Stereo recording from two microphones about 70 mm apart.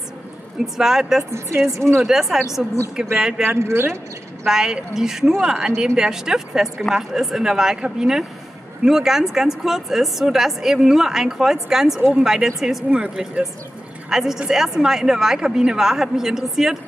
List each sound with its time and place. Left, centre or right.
0.7 s a woman's voice: centre
1.3 s a woman's voice: right
2.0 s a woman's voice: centre
3.4 s a woman's voice: right
4.5 s a woman's voice: centre